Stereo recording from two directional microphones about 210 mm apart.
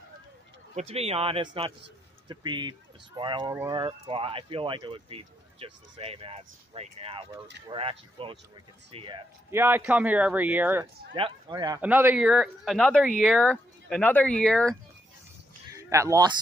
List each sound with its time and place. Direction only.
0.7 s speech: 30° right (ahead or behind)
9.6 s speech: 10° right (ahead or behind)
11.1 s speech: 25° right (ahead or behind)
11.8 s speech: 10° right (ahead or behind)
15.7 s speech: 15° right (ahead or behind)